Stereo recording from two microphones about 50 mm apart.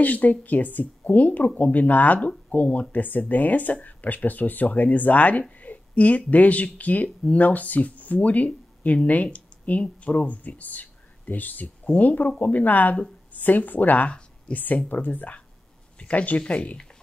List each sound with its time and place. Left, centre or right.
0.0 s speech: left